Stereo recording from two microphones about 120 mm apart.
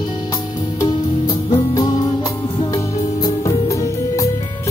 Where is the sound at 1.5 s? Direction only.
35° left (ahead or behind).